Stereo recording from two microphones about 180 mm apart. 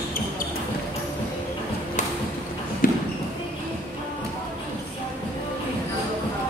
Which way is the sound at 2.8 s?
50° left (ahead or behind).